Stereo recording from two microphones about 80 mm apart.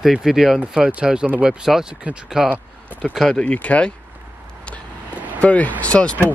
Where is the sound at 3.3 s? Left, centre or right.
Centre.